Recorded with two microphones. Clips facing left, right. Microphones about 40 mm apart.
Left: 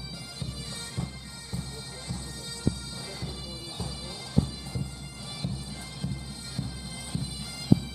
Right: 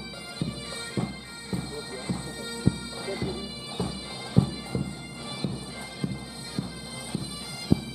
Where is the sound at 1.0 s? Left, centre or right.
Right.